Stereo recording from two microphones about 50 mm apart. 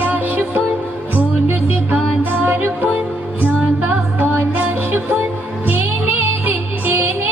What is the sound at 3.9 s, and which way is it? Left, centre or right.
Music, right.